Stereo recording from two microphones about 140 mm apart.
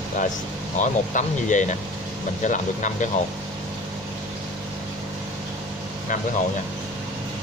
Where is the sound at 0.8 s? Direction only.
60° left (ahead or behind).